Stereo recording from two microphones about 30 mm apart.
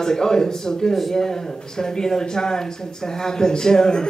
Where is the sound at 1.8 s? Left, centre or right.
Centre.